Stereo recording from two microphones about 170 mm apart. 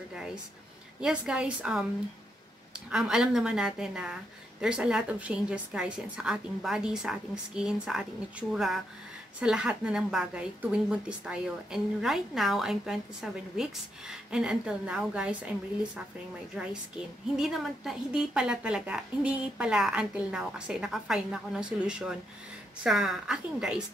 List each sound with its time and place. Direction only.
1.0 s a woman's voice: 5° right (ahead or behind)
2.9 s a woman's voice: 5° right (ahead or behind)